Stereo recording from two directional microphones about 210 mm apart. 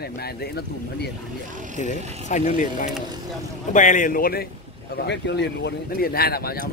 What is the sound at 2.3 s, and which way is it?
A man's voice, 35° left (ahead or behind).